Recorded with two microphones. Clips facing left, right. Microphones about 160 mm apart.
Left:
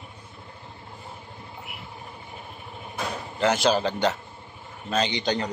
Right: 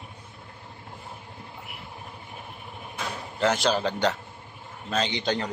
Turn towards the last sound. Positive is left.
turn(degrees=0)  # may be behind; listen again after turning